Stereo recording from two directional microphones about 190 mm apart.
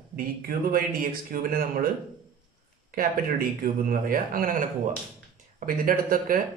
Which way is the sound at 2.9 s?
50° right (ahead or behind).